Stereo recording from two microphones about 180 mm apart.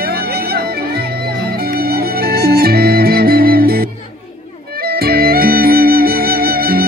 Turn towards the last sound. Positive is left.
turn(degrees=-55)  # may be behind; listen again after turning